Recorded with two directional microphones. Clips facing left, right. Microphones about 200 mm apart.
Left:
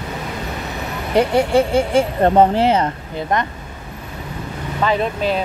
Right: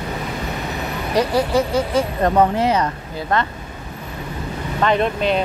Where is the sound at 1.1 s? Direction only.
30° left (ahead or behind).